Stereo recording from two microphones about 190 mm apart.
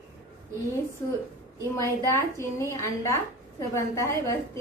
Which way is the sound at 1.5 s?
15° left (ahead or behind).